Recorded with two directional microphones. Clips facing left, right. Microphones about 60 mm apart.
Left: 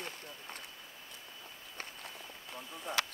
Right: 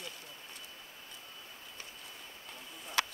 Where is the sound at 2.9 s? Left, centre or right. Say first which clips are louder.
Right 1 dB; left.